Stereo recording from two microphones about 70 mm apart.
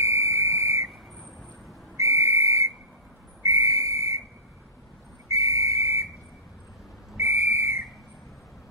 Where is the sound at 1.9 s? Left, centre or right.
Right.